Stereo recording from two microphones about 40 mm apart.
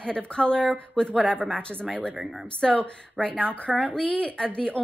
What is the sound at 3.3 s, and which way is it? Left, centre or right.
Speech, right.